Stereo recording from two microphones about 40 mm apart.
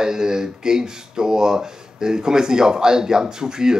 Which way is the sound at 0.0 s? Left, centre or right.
Centre.